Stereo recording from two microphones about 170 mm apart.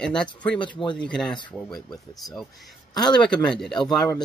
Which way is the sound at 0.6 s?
25° left (ahead or behind).